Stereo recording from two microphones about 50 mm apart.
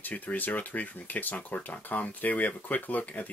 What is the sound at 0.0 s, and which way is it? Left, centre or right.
Speech, left.